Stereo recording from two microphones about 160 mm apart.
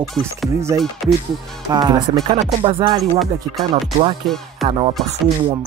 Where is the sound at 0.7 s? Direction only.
15° right (ahead or behind).